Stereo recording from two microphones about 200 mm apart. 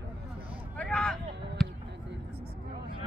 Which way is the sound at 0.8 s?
5° left (ahead or behind).